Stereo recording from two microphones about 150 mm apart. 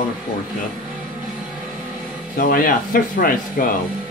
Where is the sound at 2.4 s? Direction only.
70° left (ahead or behind).